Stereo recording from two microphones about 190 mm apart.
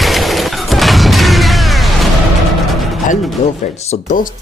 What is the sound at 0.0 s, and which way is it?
Music, centre (ahead or behind).